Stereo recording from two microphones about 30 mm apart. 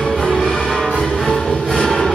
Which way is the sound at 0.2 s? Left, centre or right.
Centre.